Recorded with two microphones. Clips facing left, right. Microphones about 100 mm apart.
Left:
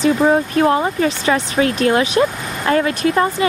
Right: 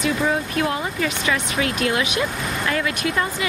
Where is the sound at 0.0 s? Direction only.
35° left (ahead or behind).